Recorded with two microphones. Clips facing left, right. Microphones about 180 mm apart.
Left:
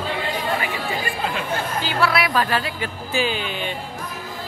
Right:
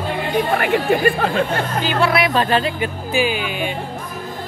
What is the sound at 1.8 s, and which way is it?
Speech, 20° right (ahead or behind).